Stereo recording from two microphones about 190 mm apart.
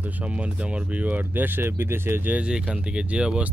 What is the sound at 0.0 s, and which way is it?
Speech, 5° right (ahead or behind).